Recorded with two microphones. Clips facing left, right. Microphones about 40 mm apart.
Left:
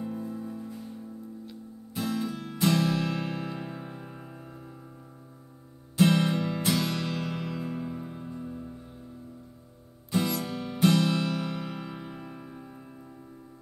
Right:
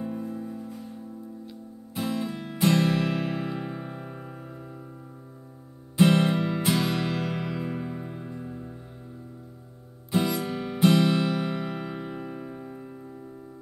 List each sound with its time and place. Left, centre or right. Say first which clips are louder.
0.0 s music: right 2 dB; centre
6.0 s music: right 3 dB; right
10.1 s music: right 3 dB; centre